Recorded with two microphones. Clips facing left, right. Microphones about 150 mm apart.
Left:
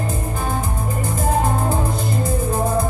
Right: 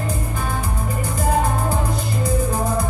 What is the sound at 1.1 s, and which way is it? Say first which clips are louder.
Music: even; 25° left (ahead or behind).